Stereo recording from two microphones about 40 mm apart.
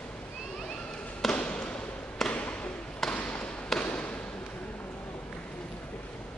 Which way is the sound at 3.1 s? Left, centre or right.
Left.